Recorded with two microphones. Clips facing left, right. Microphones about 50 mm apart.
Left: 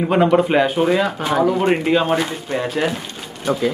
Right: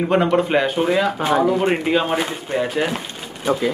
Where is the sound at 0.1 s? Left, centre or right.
Centre.